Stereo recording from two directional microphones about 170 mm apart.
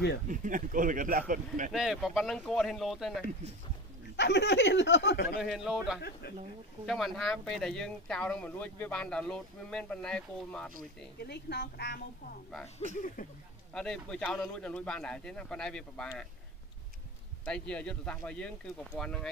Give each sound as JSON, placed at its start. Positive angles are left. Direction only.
{"t": 0.3, "sound": "speech", "side_deg": -50}
{"t": 1.7, "sound": "speech", "side_deg": 0}
{"t": 4.2, "sound": "speech", "side_deg": 90}
{"t": 5.4, "sound": "speech", "side_deg": -5}
{"t": 11.2, "sound": "speech", "side_deg": 70}
{"t": 12.9, "sound": "speech", "side_deg": 50}
{"t": 13.7, "sound": "speech", "side_deg": 5}
{"t": 17.5, "sound": "speech", "side_deg": 5}